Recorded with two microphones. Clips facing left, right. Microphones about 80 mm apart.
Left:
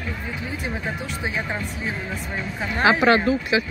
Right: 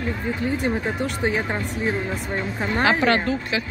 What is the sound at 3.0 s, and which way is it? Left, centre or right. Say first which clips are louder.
Speech: left 3 dB; centre.